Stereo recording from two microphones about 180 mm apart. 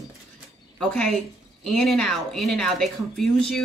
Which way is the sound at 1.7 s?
Centre (ahead or behind).